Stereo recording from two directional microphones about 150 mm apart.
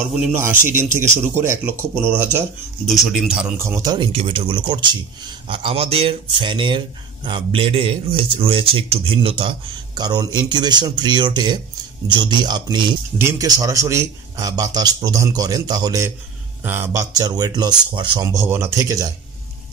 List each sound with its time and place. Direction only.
0.1 s speech: 10° right (ahead or behind)
2.9 s speech: centre (ahead or behind)
3.5 s speech: 15° right (ahead or behind)
3.9 s a man's voice: 35° right (ahead or behind)
13.2 s a man's voice: 20° right (ahead or behind)